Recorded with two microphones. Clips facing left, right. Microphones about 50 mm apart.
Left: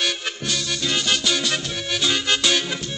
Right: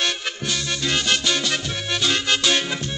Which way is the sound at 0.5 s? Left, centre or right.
Centre.